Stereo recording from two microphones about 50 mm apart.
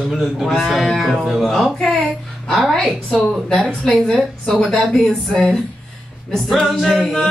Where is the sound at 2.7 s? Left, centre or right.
Centre.